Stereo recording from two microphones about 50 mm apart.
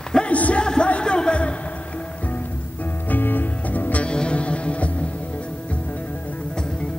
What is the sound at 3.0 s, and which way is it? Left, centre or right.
Music, left.